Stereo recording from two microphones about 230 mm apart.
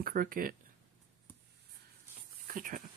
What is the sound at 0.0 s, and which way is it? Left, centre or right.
Speech, right.